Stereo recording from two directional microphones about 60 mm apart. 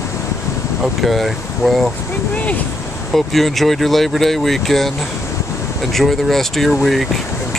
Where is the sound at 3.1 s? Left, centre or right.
Centre.